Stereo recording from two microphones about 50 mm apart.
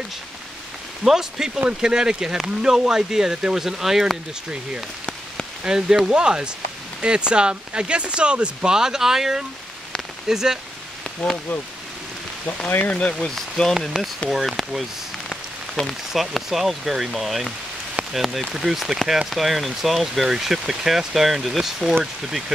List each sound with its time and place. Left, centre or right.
1.0 s speech: centre
5.6 s speech: centre
12.6 s speech: left
13.3 s speech: centre
15.8 s speech: centre
16.1 s speech: centre